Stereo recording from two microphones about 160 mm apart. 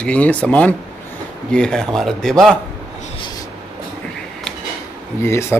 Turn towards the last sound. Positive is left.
turn(degrees=15)  # may be behind; listen again after turning